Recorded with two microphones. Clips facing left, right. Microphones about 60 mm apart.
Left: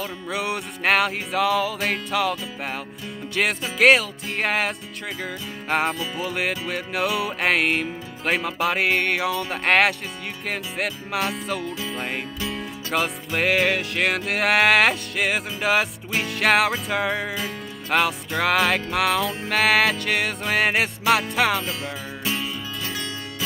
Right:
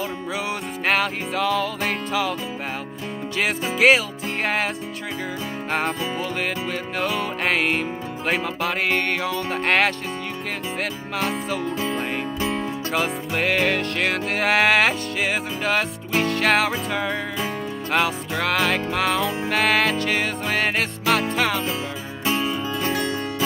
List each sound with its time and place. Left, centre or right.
0.3 s music: centre
3.3 s music: centre
5.7 s music: centre
12.4 s music: right
12.9 s music: centre
22.2 s music: right